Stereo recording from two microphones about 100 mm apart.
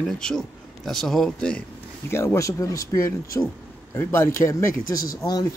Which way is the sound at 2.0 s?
25° left (ahead or behind).